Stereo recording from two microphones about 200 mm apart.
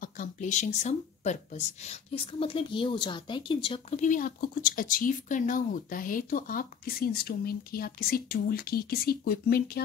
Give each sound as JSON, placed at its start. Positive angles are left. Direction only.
{"t": 0.0, "sound": "speech", "side_deg": 40}